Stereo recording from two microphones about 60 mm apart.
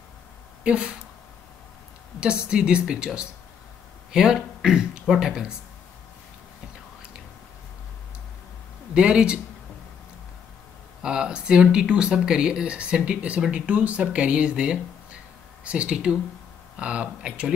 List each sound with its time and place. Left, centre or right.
0.7 s speech: centre
2.1 s speech: centre
4.1 s speech: centre
8.9 s speech: centre
11.0 s speech: centre